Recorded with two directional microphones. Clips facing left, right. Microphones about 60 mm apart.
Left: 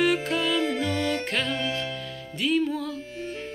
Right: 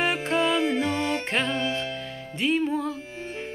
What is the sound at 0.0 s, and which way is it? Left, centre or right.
Music, right.